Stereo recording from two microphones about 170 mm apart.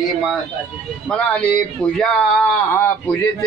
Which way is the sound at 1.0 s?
5° left (ahead or behind).